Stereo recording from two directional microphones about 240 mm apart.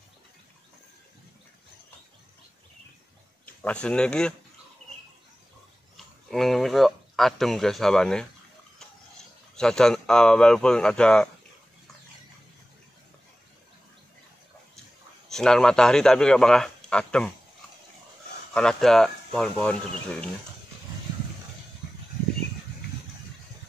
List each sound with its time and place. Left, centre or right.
3.6 s speech: centre
6.3 s speech: centre
9.6 s speech: centre
15.2 s speech: centre
18.5 s speech: centre